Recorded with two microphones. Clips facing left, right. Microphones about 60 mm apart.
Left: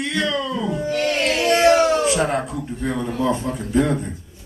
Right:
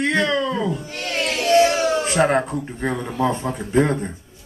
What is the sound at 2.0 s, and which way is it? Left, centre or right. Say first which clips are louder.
Speech: right 2 dB; right.